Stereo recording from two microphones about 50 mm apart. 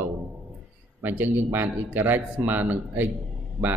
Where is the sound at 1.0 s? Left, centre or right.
Right.